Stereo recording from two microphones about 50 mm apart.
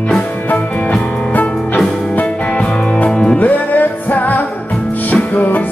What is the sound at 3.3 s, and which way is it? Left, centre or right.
Music, left.